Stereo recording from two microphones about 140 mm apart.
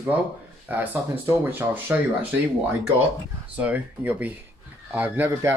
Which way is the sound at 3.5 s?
10° right (ahead or behind).